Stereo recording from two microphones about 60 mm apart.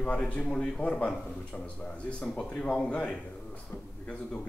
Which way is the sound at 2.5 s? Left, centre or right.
Centre.